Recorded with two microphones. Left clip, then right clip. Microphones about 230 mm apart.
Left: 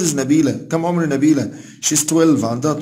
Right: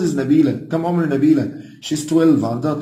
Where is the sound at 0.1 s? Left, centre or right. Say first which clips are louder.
Even; left.